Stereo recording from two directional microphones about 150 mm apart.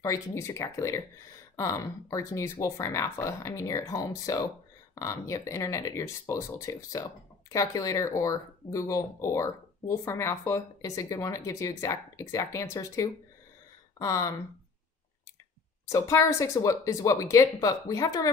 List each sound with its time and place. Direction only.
0.0 s speech: 20° left (ahead or behind)
15.9 s speech: 20° left (ahead or behind)